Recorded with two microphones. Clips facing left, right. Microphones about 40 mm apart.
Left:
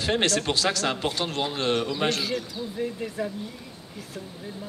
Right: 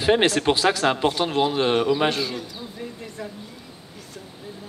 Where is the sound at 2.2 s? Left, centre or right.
Centre.